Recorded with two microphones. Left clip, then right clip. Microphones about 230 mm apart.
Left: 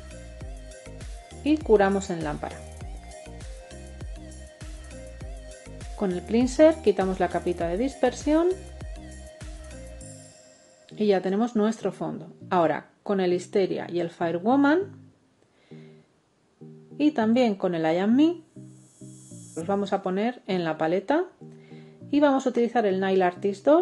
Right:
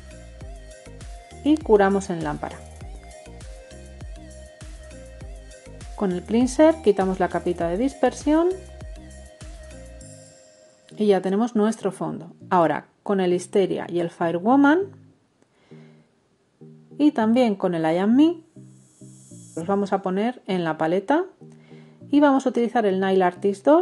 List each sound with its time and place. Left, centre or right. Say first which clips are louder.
0.1 s music: even; centre
1.7 s speech: right 2 dB; centre
2.8 s music: even; centre
5.9 s speech: right 2 dB; right
8.5 s music: right 1 dB; centre
10.9 s speech: right 3 dB; right
16.9 s speech: right 3 dB; right
19.5 s speech: right 3 dB; right